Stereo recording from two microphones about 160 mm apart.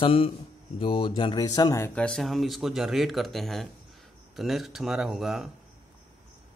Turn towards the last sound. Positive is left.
turn(degrees=0)  # may be behind; listen again after turning